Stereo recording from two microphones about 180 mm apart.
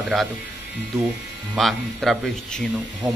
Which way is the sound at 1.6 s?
Centre (ahead or behind).